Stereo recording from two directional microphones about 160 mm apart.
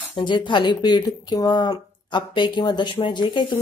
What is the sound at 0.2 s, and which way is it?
Speech, 30° left (ahead or behind).